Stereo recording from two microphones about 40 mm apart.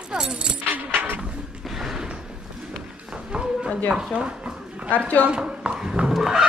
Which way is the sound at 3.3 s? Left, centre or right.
Right.